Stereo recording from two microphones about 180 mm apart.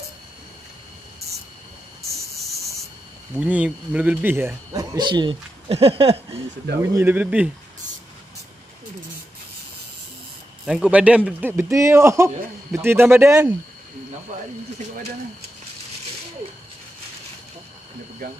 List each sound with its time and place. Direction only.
3.3 s speech: 10° right (ahead or behind)
4.9 s speech: 25° right (ahead or behind)
6.8 s speech: 15° right (ahead or behind)
10.6 s speech: 5° right (ahead or behind)